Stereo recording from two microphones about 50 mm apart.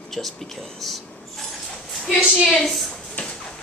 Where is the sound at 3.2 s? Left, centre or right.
Left.